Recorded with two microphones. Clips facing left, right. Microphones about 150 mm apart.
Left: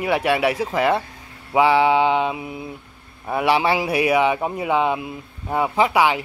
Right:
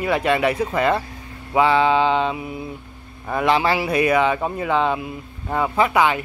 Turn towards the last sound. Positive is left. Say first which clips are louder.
# even
turn(degrees=10)  # may be behind; listen again after turning